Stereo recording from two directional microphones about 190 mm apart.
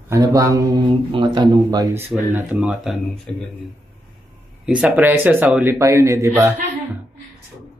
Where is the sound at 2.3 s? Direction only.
10° right (ahead or behind).